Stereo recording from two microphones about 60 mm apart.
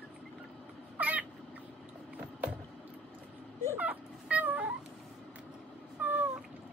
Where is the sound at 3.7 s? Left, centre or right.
Right.